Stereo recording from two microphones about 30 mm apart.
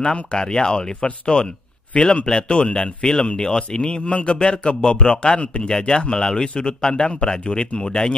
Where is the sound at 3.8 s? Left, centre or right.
Left.